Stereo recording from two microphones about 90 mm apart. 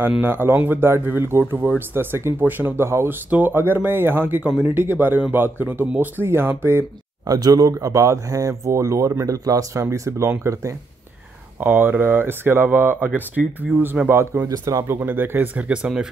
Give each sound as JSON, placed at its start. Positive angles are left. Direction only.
{"t": 0.2, "sound": "speech", "side_deg": -25}
{"t": 3.3, "sound": "speech", "side_deg": -20}
{"t": 7.2, "sound": "speech", "side_deg": -45}
{"t": 11.6, "sound": "speech", "side_deg": -20}
{"t": 14.6, "sound": "speech", "side_deg": -40}
{"t": 14.9, "sound": "speech", "side_deg": -20}